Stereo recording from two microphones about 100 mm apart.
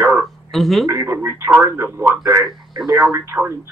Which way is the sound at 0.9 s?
25° right (ahead or behind).